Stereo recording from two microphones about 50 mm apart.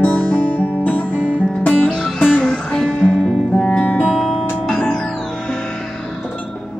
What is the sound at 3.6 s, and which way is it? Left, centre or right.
Music, centre.